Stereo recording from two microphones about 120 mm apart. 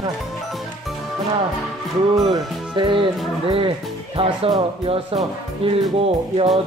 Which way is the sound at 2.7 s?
45° right (ahead or behind).